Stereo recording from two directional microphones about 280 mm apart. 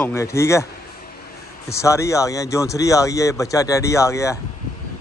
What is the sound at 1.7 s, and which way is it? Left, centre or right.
Speech, centre.